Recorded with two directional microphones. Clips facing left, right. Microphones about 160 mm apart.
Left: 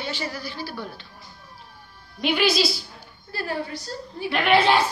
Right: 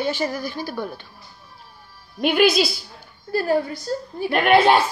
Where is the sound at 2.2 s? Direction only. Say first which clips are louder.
Right 4 dB; 50° right (ahead or behind).